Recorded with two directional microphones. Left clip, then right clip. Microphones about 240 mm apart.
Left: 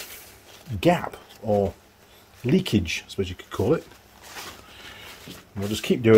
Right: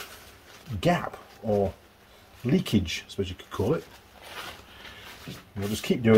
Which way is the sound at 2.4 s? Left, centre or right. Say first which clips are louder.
Left 4 dB; left.